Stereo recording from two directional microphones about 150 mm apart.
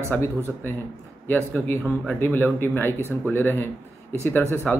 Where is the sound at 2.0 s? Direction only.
10° left (ahead or behind).